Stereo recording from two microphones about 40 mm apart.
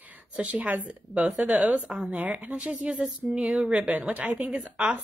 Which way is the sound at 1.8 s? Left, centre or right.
Centre.